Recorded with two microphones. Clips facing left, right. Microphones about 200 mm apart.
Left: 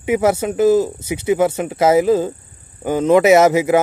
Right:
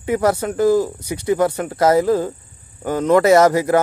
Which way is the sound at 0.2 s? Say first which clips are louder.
Left 1 dB; 25° left (ahead or behind).